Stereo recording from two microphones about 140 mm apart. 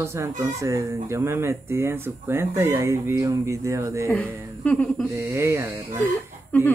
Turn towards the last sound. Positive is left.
turn(degrees=10)  # may be behind; listen again after turning